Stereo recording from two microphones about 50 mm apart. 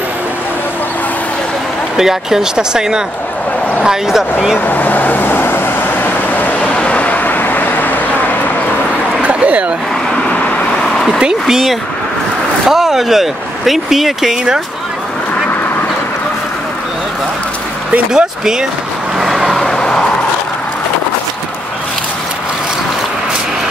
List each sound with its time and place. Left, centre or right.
2.0 s speech: centre
4.6 s vehicle: left
6.7 s vehicle: left
9.2 s a sound: right
10.1 s vehicle: left
11.1 s speech: centre
18.1 s speech: centre
19.1 s vehicle: centre
19.6 s vehicle: centre